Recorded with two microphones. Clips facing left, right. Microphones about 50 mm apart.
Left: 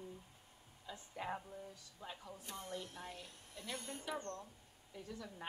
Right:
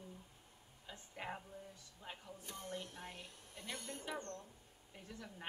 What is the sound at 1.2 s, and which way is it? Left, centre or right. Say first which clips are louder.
Speech: left 3 dB; right.